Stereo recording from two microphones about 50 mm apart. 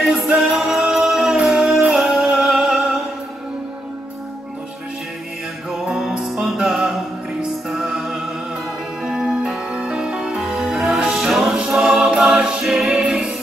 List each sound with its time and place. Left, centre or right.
0.3 s music: centre
2.0 s music: centre
5.9 s music: centre
12.4 s a capella: centre
13.0 s music: centre